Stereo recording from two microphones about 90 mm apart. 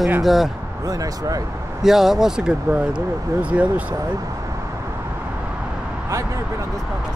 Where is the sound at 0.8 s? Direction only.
40° right (ahead or behind).